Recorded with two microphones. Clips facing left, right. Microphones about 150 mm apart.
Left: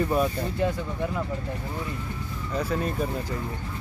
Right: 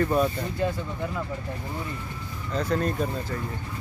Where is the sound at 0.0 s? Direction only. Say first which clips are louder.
Right 1 dB; 5° left (ahead or behind).